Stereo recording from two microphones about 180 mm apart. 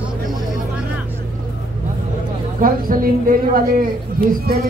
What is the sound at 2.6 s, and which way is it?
A woman's voice, 50° right (ahead or behind).